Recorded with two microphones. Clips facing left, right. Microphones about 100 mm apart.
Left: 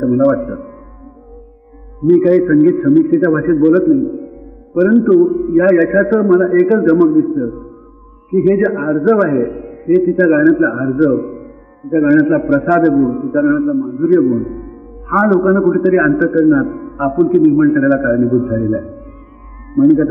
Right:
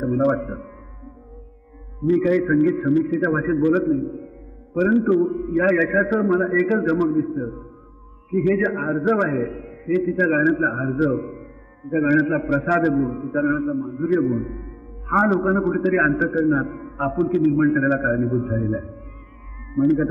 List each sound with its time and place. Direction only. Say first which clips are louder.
0.0 s a man's voice: left 8 dB; 30° left (ahead or behind)
2.0 s a man's voice: left 9 dB; 30° left (ahead or behind)